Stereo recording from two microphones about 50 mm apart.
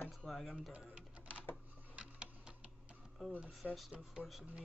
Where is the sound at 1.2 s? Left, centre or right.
Left.